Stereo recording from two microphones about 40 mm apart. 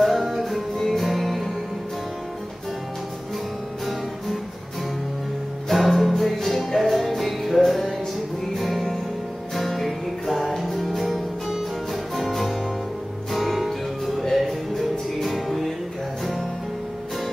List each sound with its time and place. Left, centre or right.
0.0 s music: centre
5.7 s music: centre
13.3 s music: centre